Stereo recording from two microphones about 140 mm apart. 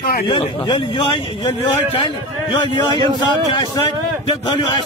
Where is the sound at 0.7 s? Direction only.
40° left (ahead or behind).